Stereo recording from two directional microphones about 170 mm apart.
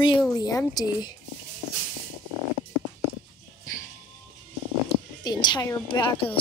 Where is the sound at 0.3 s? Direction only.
20° left (ahead or behind).